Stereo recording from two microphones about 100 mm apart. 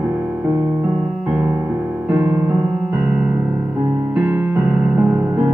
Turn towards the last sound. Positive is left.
turn(degrees=-15)  # may be behind; listen again after turning